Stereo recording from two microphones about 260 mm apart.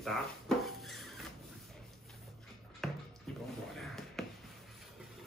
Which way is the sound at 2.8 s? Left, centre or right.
Centre.